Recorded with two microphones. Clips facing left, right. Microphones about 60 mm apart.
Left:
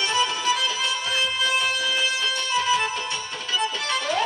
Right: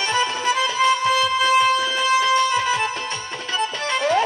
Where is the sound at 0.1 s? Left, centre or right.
Right.